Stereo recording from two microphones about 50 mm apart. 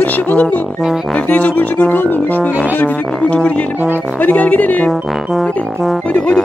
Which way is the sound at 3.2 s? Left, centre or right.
Left.